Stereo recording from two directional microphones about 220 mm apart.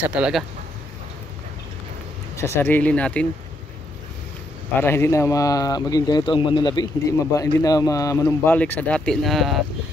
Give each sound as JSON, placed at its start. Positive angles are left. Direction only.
{"t": 0.1, "sound": "speech", "side_deg": -5}
{"t": 2.3, "sound": "speech", "side_deg": 10}
{"t": 4.7, "sound": "speech", "side_deg": 10}